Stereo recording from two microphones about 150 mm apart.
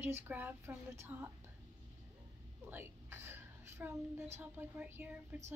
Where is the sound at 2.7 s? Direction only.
15° right (ahead or behind).